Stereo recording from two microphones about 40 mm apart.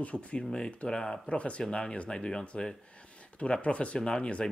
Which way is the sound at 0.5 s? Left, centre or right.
Left.